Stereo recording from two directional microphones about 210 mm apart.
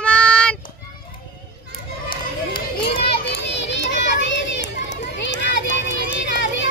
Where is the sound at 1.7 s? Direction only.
45° left (ahead or behind).